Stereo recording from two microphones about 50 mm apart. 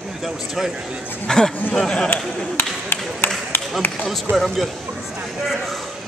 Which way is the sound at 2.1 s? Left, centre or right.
Left.